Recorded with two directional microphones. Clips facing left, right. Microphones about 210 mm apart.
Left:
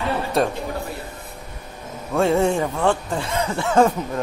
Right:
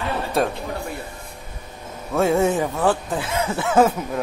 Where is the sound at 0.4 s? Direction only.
Centre (ahead or behind).